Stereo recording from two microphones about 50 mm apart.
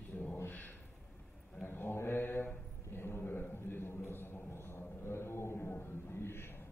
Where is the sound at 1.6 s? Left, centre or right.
Left.